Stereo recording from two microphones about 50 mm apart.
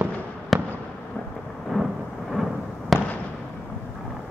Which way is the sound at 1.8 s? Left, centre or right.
Left.